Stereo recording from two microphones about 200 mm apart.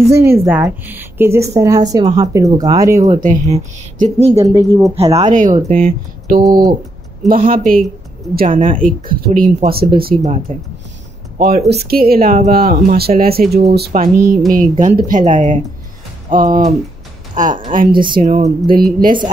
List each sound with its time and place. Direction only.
0.1 s a woman's voice: 15° right (ahead or behind)
3.2 s speech: 35° right (ahead or behind)
4.4 s a woman's voice: 15° right (ahead or behind)
4.9 s speech: 30° right (ahead or behind)
6.4 s speech: 20° right (ahead or behind)
7.2 s speech: 45° right (ahead or behind)
11.3 s speech: 50° right (ahead or behind)
17.9 s speech: 25° right (ahead or behind)
18.2 s speech: 40° right (ahead or behind)